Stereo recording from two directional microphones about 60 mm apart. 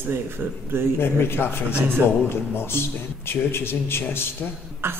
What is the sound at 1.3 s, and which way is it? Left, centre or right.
A man's voice, left.